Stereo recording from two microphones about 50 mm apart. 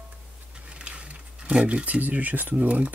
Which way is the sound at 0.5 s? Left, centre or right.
Right.